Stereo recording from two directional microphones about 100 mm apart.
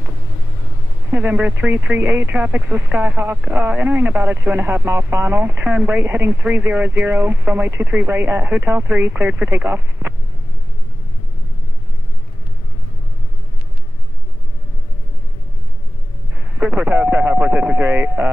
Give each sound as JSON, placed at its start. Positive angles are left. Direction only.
{"t": 1.1, "sound": "speech", "side_deg": -20}
{"t": 16.5, "sound": "speech", "side_deg": -15}